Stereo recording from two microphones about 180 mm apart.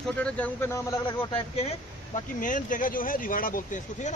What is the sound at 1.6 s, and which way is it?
Speech, 40° left (ahead or behind).